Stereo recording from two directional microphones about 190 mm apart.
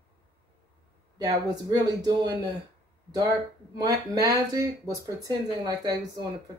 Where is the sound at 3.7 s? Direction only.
20° right (ahead or behind).